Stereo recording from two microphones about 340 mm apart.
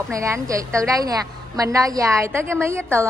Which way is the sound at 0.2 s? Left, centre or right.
Centre.